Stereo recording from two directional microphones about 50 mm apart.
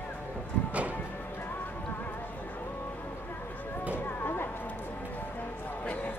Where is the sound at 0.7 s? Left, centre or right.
Right.